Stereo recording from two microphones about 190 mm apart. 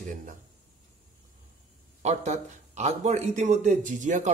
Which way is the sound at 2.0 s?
35° right (ahead or behind).